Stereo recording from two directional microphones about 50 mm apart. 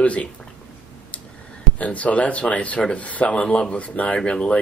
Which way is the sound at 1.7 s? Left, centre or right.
Left.